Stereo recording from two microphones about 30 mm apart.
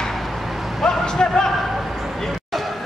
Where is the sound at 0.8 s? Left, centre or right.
Left.